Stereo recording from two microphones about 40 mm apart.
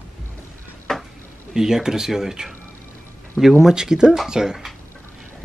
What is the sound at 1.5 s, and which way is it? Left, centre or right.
Speech, centre.